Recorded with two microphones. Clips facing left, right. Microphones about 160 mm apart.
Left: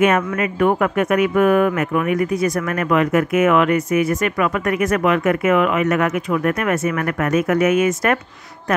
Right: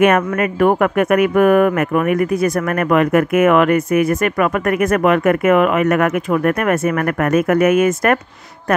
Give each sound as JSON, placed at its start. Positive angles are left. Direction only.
{"t": 0.0, "sound": "speech", "side_deg": -55}